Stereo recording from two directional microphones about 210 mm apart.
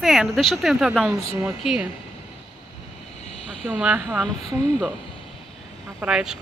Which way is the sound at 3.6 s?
5° right (ahead or behind).